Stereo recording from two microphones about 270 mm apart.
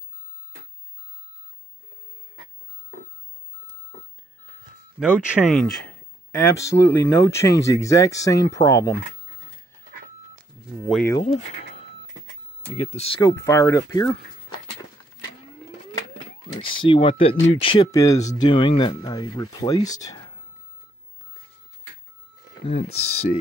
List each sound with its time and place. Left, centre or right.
5.0 s speech: centre
10.9 s speech: centre
13.0 s speech: centre
16.5 s speech: centre
22.8 s speech: left